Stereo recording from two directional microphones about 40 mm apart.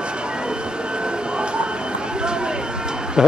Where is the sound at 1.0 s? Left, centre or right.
Right.